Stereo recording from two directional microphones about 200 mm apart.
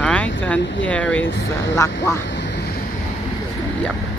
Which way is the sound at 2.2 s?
60° left (ahead or behind).